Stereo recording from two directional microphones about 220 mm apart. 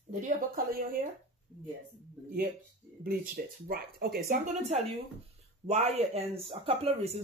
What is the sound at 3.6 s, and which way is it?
Speech, 45° right (ahead or behind).